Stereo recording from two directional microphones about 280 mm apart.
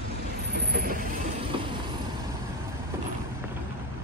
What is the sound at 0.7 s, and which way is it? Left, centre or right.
Vehicle, right.